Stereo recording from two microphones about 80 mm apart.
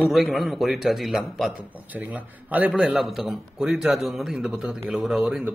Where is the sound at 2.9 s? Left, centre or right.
Centre.